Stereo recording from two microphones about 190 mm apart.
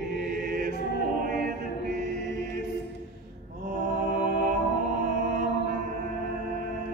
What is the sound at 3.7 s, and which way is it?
Music, 50° right (ahead or behind).